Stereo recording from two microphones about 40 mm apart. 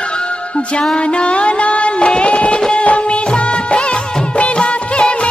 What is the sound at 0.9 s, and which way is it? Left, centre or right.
Music, left.